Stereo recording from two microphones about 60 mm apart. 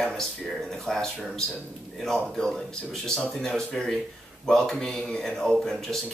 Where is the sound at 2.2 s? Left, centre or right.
Centre.